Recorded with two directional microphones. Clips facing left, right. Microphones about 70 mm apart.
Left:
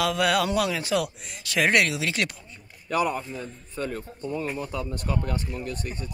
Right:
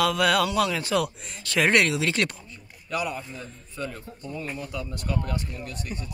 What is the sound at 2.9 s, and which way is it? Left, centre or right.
Speech, left.